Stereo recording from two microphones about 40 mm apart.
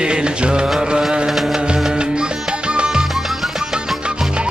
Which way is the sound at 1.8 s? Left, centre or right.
Right.